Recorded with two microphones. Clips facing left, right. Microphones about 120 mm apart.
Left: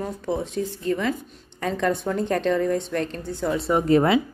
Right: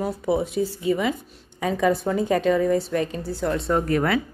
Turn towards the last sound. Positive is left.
turn(degrees=20)  # may be behind; listen again after turning